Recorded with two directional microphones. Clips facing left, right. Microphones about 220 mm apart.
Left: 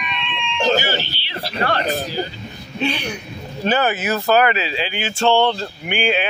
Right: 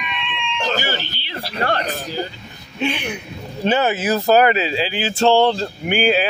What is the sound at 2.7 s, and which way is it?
Speech, 15° right (ahead or behind).